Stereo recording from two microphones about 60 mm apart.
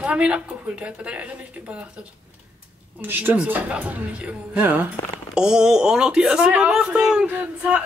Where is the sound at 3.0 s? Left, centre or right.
Right.